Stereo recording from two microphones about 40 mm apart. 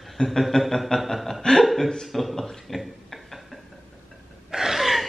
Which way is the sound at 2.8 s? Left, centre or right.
Centre.